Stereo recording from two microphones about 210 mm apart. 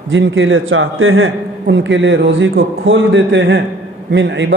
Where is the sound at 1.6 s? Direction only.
60° right (ahead or behind).